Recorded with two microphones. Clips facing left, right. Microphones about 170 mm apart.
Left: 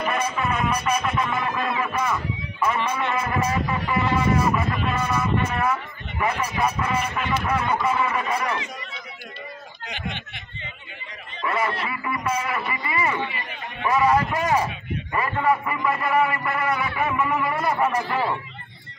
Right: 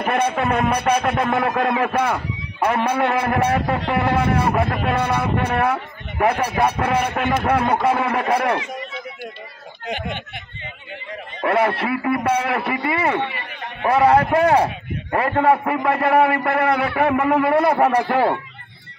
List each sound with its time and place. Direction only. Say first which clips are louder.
0.0 s speech: right 5 dB; 60° right (ahead or behind)
9.8 s speech: right 7 dB; 55° right (ahead or behind)
11.4 s speech: right 7 dB; 65° right (ahead or behind)